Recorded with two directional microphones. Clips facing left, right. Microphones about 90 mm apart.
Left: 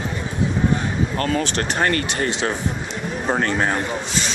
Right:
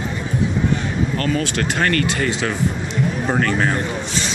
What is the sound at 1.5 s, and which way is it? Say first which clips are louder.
Speech: right 1 dB; 25° left (ahead or behind).